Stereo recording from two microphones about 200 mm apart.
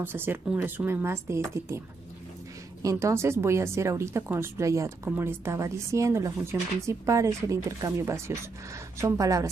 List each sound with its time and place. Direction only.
0.0 s speech: 10° right (ahead or behind)
2.8 s speech: 15° right (ahead or behind)